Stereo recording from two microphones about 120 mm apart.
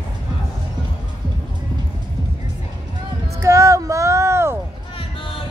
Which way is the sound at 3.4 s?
25° right (ahead or behind).